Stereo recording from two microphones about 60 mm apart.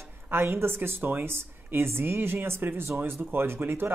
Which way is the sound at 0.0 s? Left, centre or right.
Right.